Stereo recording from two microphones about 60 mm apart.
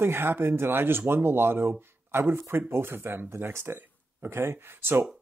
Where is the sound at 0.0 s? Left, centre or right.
Right.